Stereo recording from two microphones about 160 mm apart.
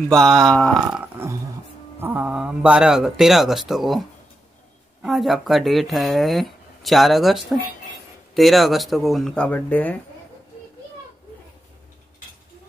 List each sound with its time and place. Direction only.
0.1 s speech: centre (ahead or behind)
1.0 s a sound: 15° right (ahead or behind)
2.0 s speech: 10° right (ahead or behind)
5.0 s speech: centre (ahead or behind)